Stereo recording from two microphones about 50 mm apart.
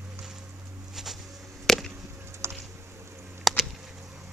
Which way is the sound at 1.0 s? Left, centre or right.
Centre.